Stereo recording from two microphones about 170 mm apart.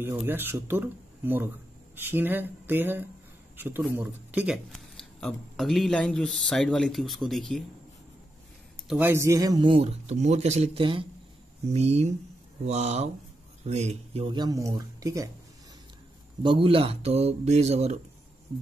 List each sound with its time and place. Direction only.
0.0 s speech: 10° right (ahead or behind)
8.8 s a man's voice: 10° right (ahead or behind)
16.4 s speech: 30° right (ahead or behind)